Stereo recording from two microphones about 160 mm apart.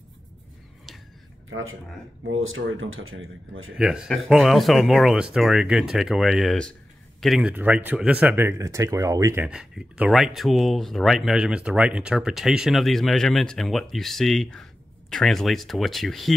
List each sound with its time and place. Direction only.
3.7 s speech: 5° right (ahead or behind)
9.5 s speech: 5° right (ahead or behind)